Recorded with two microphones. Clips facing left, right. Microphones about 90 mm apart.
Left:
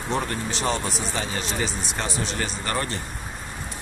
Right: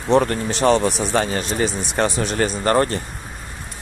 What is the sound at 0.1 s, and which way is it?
Speech, 60° right (ahead or behind).